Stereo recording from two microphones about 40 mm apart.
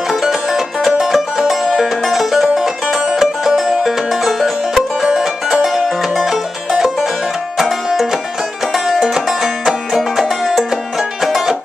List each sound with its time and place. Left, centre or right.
0.2 s music: centre
5.0 s music: centre